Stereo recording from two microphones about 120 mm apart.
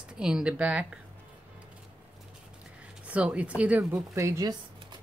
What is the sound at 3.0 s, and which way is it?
Speech, 10° right (ahead or behind).